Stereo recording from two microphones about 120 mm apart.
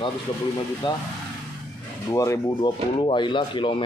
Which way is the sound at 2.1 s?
25° left (ahead or behind).